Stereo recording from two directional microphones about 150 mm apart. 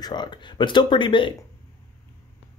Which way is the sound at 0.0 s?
30° left (ahead or behind).